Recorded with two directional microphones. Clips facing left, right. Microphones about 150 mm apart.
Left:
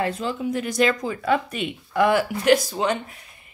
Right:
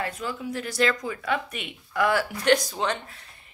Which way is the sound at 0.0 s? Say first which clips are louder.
Left 6 dB; 25° left (ahead or behind).